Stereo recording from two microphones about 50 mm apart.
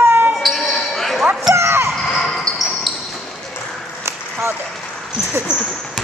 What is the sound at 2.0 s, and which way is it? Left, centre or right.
Basketball bounce, centre.